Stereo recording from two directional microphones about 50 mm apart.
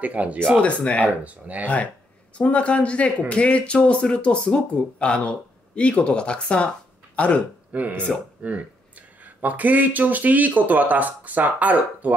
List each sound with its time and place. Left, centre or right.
0.0 s speech: right
0.6 s speech: left
1.0 s speech: right
2.3 s speech: left
7.7 s speech: right